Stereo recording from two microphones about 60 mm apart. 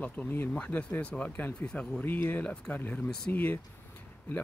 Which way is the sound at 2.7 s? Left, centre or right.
Left.